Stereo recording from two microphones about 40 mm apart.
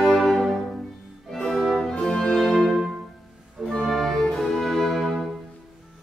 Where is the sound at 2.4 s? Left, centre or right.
Centre.